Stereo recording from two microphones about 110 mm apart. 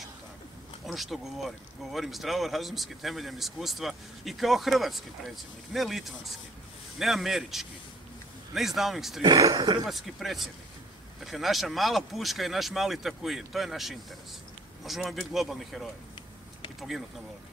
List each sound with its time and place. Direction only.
0.8 s speech: centre (ahead or behind)
9.2 s speech: 35° right (ahead or behind)
9.8 s speech: centre (ahead or behind)